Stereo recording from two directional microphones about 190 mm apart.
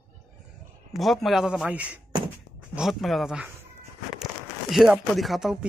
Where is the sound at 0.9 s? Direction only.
Centre (ahead or behind).